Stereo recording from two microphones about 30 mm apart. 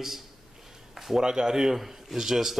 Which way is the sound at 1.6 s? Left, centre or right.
Centre.